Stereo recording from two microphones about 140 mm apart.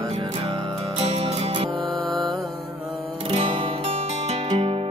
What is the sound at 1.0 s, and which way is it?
Music, 50° right (ahead or behind).